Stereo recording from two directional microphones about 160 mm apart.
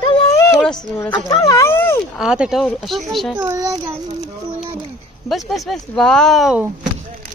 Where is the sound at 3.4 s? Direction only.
20° right (ahead or behind).